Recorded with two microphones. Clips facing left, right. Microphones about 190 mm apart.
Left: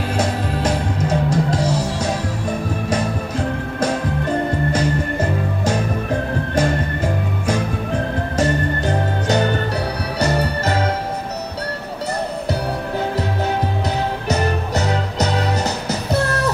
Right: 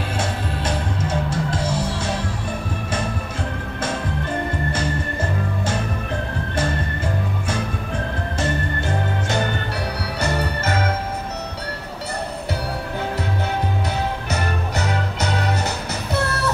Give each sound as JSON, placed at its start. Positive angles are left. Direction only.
{"t": 0.2, "sound": "music", "side_deg": 40}
{"t": 6.5, "sound": "music", "side_deg": 40}
{"t": 10.1, "sound": "organ", "side_deg": 40}
{"t": 14.3, "sound": "music", "side_deg": 40}